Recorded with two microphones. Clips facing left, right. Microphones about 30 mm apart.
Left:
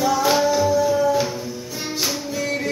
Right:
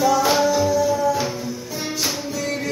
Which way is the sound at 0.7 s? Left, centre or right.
Left.